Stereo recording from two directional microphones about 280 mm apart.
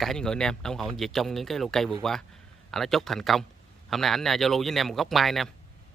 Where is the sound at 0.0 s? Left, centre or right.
Centre.